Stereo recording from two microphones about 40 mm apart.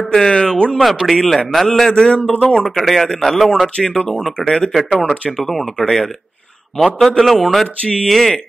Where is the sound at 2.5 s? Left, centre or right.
Centre.